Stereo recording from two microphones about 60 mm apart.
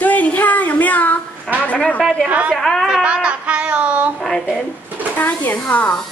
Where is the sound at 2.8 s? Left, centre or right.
Centre.